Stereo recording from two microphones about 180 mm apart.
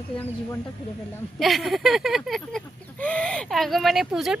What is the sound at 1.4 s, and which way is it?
A woman's voice, centre (ahead or behind).